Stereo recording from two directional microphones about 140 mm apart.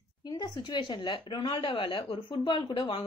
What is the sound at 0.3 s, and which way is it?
A woman's voice, 30° left (ahead or behind).